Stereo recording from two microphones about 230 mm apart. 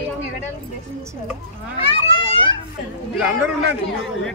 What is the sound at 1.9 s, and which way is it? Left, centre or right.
Children playing, left.